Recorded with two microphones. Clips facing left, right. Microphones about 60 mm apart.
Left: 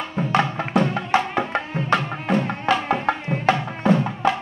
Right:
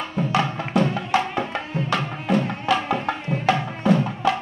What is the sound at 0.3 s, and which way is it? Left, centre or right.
Music, left.